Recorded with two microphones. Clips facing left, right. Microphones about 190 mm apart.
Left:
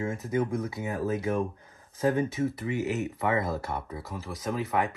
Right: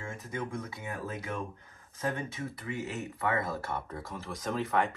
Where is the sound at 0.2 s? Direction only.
25° left (ahead or behind).